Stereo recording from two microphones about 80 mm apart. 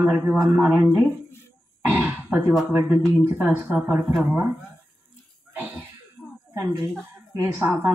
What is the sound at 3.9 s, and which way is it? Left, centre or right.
Speech, right.